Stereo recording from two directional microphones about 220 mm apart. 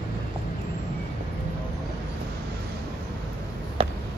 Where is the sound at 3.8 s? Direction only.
25° right (ahead or behind).